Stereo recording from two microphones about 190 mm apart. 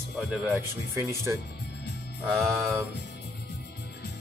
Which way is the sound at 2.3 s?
Centre (ahead or behind).